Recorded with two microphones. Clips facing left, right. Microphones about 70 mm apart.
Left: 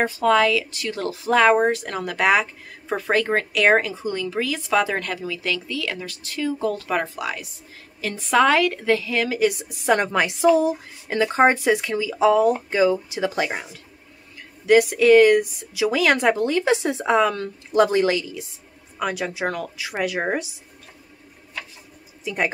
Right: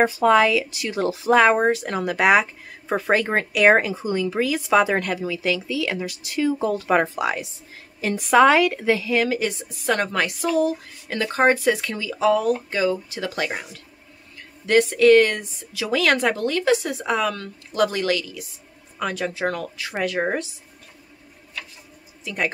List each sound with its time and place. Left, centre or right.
0.0 s a woman's voice: centre
14.7 s a woman's voice: centre
18.9 s a woman's voice: centre
22.2 s speech: centre